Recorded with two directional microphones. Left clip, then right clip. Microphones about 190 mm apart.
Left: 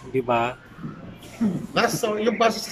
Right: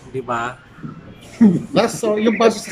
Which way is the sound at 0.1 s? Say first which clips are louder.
Left 1 dB; 10° left (ahead or behind).